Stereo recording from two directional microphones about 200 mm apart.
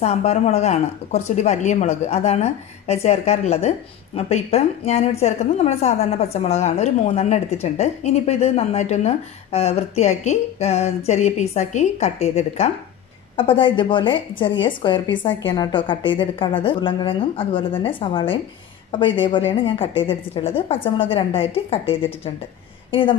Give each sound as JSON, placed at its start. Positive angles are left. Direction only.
{"t": 0.0, "sound": "a woman's voice", "side_deg": 35}